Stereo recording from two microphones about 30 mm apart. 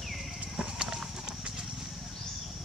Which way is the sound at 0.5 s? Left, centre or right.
Centre.